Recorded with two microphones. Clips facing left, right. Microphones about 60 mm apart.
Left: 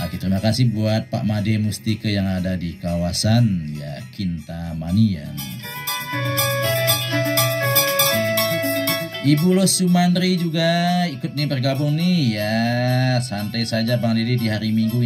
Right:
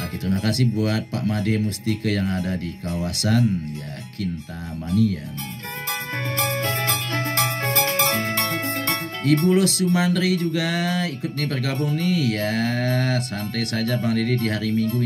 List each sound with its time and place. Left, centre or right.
0.5 s speech: right
3.0 s speech: right
4.9 s speech: right
6.3 s music: right
12.8 s speech: right